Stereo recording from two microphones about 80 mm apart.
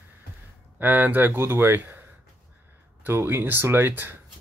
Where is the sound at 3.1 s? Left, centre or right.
Right.